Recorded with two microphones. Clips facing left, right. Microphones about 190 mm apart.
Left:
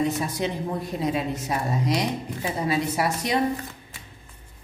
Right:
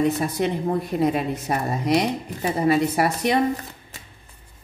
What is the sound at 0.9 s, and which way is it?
A woman's voice, 60° right (ahead or behind).